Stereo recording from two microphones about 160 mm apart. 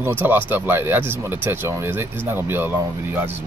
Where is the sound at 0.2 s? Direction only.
10° right (ahead or behind).